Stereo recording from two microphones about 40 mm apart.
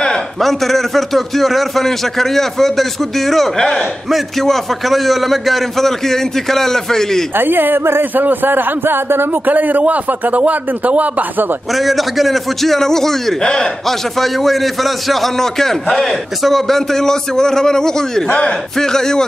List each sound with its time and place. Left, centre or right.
0.4 s a man's voice: centre
7.3 s a man's voice: right
8.0 s a man's voice: right
9.5 s a man's voice: right
11.7 s a man's voice: centre
13.4 s a man's voice: left
13.8 s a man's voice: centre